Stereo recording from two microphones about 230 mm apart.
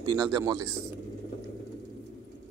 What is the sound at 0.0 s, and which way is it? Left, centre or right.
Speech, centre.